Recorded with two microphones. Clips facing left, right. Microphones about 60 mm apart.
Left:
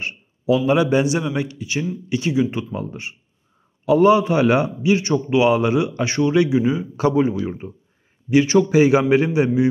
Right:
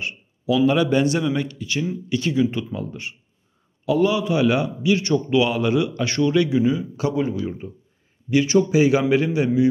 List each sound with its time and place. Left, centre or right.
0.7 s a man's voice: centre
2.5 s a man's voice: left